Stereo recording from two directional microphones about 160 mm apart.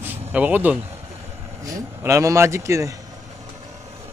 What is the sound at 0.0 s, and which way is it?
Vehicle, 10° right (ahead or behind).